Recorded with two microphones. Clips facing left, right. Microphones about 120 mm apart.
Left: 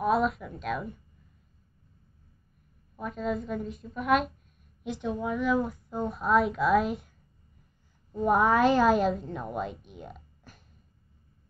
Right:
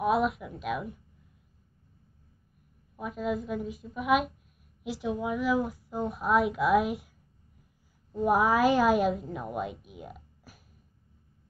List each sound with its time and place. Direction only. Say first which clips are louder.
0.0 s a woman's voice: even; 5° right (ahead or behind)
3.0 s a woman's voice: even; 5° right (ahead or behind)
8.1 s a woman's voice: left 1 dB; 5° right (ahead or behind)